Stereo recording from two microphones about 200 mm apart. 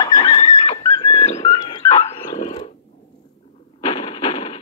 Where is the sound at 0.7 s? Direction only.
30° left (ahead or behind).